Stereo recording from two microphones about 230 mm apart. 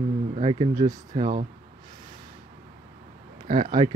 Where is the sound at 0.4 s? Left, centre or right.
Right.